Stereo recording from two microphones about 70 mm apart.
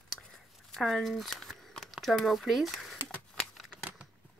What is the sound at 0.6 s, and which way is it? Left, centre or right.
Speech, centre.